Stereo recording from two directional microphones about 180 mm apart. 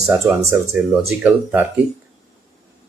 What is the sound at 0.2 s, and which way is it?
Speech, 15° right (ahead or behind).